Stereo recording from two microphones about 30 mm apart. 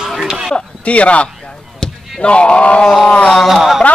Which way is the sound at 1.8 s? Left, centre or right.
Centre.